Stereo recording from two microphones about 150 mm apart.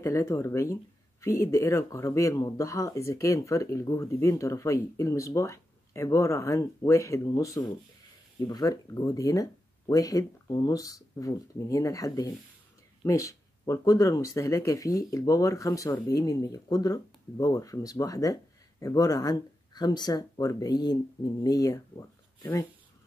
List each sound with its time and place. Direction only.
0.0 s speech: 20° left (ahead or behind)